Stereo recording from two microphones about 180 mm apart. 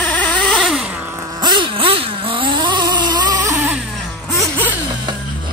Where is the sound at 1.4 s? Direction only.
25° right (ahead or behind).